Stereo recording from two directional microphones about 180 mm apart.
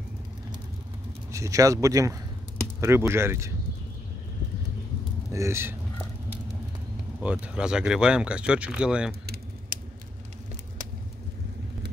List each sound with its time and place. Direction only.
1.3 s speech: 20° right (ahead or behind)
5.3 s speech: 15° right (ahead or behind)
7.2 s speech: 5° right (ahead or behind)
9.2 s typing: 60° right (ahead or behind)